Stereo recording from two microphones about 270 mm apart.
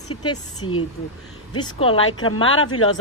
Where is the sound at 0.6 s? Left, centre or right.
Left.